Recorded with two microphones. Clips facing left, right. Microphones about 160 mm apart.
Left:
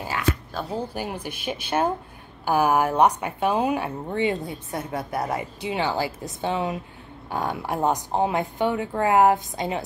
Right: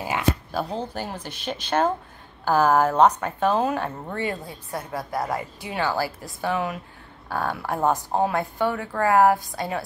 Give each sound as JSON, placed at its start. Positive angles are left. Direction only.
{"t": 0.1, "sound": "speech", "side_deg": -10}
{"t": 0.7, "sound": "a woman's voice", "side_deg": 10}